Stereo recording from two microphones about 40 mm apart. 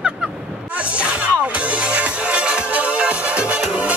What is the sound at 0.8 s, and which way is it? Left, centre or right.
Speech, right.